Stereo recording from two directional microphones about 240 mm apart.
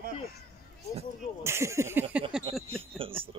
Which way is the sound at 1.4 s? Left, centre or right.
Centre.